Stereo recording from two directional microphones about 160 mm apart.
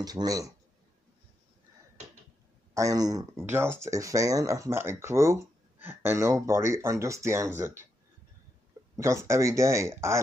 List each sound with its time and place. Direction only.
0.0 s speech: 25° right (ahead or behind)
2.7 s speech: 20° right (ahead or behind)
8.9 s speech: 20° right (ahead or behind)